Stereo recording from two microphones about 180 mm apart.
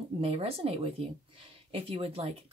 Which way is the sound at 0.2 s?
35° right (ahead or behind).